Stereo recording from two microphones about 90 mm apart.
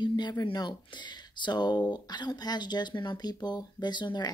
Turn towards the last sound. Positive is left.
turn(degrees=55)  # may be behind; listen again after turning